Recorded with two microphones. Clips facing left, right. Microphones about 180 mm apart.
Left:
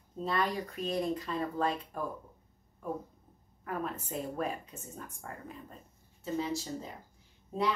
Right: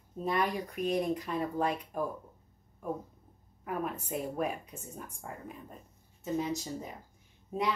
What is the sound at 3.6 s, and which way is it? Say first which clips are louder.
Speech: right 1 dB; 10° right (ahead or behind).